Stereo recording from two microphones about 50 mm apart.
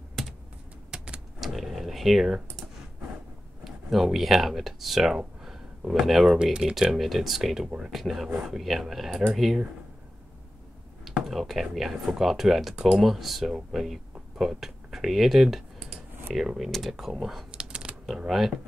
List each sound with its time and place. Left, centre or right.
0.9 s power windows: right
1.4 s a sound: centre
3.6 s speech: centre
11.2 s speech: centre
17.5 s shuffling cards: right
18.0 s speech: centre